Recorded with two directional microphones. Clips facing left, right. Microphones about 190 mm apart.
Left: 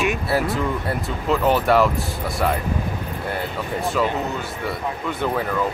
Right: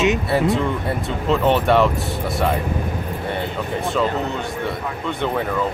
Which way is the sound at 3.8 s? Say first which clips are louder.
Right 1 dB; centre (ahead or behind).